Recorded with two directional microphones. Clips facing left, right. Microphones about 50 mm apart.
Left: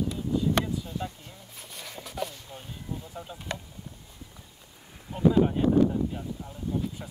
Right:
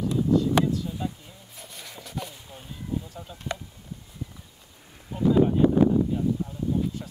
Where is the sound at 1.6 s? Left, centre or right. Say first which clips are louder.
Left 1 dB; centre.